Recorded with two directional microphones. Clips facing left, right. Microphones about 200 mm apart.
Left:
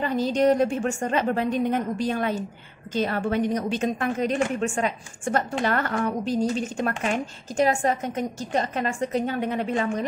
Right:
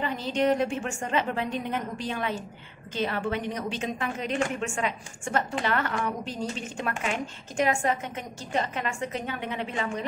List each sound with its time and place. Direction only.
0.0 s a woman's voice: 40° left (ahead or behind)